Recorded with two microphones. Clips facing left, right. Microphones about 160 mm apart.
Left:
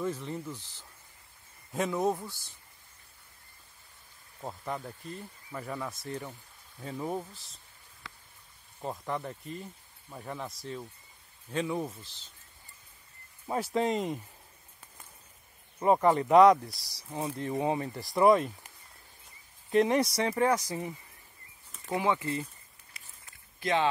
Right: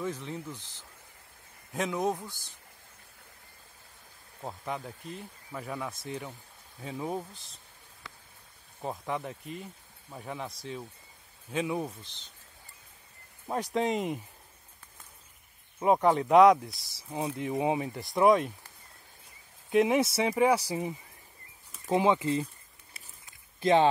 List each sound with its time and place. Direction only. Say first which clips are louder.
0.0 s speech: left 1 dB; 5° left (ahead or behind)
1.8 s speech: left 1 dB; 5° left (ahead or behind)
4.4 s speech: even; 5° right (ahead or behind)
8.8 s speech: right 1 dB; 5° right (ahead or behind)
11.9 s speech: even; 5° left (ahead or behind)
13.7 s speech: even; centre (ahead or behind)
15.8 s speech: even; centre (ahead or behind)
19.7 s speech: right 1 dB; 5° right (ahead or behind); by 22.5 s 20° right (ahead or behind)
23.6 s speech: right 5 dB; 25° right (ahead or behind)